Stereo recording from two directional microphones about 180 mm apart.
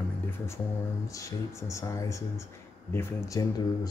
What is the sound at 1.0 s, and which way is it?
Speech, 15° left (ahead or behind).